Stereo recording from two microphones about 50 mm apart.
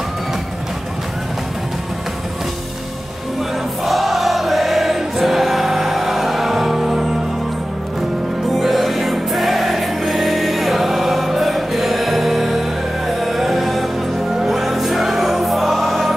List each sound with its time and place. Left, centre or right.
3.8 s choir: centre
8.5 s music: centre